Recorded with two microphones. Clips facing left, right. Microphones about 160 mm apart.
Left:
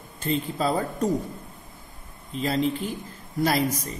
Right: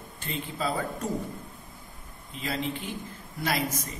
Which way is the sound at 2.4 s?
40° left (ahead or behind).